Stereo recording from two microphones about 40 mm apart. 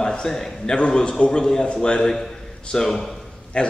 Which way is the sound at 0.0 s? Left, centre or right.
Centre.